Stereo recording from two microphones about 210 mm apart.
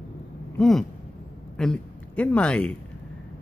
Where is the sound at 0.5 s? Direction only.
Centre (ahead or behind).